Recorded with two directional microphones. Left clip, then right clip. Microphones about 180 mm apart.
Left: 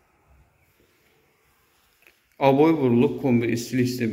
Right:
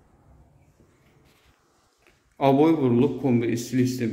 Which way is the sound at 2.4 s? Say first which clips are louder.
Left 1 dB; 10° right (ahead or behind).